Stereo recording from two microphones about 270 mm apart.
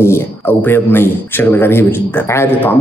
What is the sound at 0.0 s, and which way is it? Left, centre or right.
Speech, centre.